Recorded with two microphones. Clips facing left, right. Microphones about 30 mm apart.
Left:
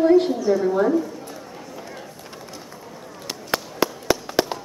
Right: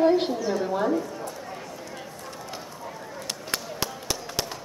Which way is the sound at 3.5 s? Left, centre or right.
Centre.